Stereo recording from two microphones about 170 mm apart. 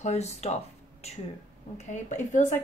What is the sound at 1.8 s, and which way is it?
Speech, 45° left (ahead or behind).